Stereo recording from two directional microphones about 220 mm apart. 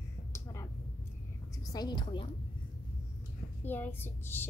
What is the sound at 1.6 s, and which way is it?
Speech, 15° left (ahead or behind).